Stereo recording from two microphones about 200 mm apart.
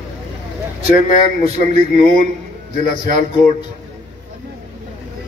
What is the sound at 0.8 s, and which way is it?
Speech, 45° left (ahead or behind).